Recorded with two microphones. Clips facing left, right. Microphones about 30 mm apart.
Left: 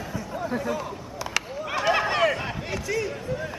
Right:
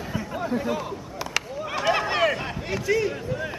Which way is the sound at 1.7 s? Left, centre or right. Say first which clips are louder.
Left 1 dB; centre.